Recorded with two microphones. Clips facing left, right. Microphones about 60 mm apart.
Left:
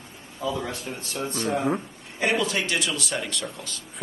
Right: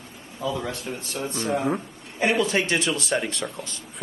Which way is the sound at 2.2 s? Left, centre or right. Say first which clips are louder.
Right 2 dB; right.